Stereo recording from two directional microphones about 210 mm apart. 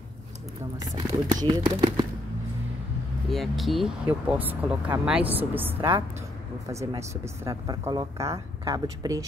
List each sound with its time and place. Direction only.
0.9 s speech: 20° right (ahead or behind)
3.3 s speech: centre (ahead or behind); by 9.2 s 15° right (ahead or behind)